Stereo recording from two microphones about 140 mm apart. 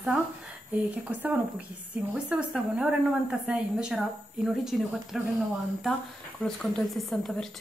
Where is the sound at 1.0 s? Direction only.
10° right (ahead or behind).